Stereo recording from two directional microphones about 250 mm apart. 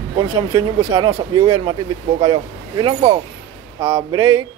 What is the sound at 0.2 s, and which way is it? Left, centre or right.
Speech, centre.